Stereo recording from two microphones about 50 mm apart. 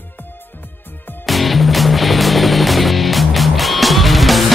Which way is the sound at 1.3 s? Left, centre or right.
Centre.